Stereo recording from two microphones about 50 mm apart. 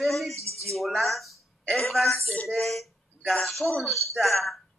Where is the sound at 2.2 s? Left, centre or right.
Left.